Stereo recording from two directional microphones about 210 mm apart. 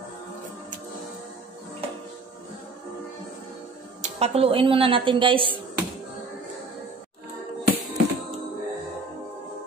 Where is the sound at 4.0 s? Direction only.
30° right (ahead or behind).